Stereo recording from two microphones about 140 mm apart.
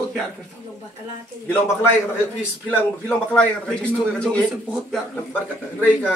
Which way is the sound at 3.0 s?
5° left (ahead or behind).